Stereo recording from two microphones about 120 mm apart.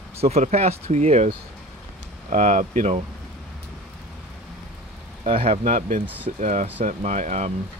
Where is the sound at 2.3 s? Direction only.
90° right.